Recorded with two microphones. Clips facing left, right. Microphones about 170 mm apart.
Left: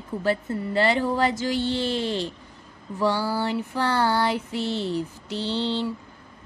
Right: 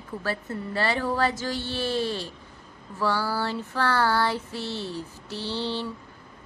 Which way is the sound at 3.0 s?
20° left (ahead or behind).